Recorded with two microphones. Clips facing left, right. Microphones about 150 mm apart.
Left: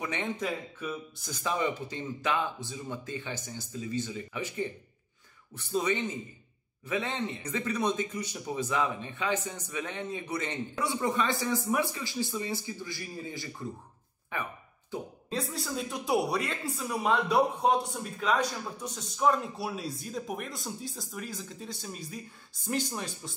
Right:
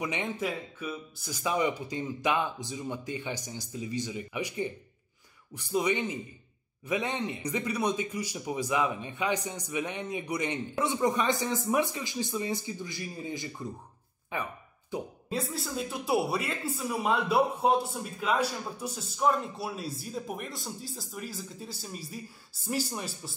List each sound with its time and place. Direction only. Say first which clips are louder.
0.0 s a man's voice: right 1 dB; 10° right (ahead or behind)
14.9 s speech: right 2 dB; 5° right (ahead or behind)